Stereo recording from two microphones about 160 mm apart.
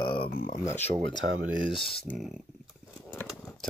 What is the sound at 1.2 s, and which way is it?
Speech, 90° right.